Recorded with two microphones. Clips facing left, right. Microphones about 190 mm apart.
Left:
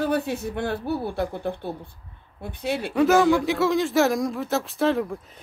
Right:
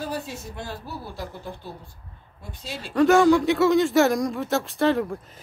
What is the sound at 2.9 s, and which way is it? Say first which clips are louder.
Speech: right 2 dB; 5° left (ahead or behind).